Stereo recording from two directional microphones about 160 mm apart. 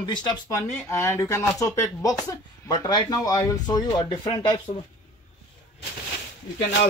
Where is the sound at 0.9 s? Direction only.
15° left (ahead or behind).